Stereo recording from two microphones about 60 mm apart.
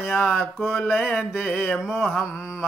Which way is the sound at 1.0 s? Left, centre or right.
Centre.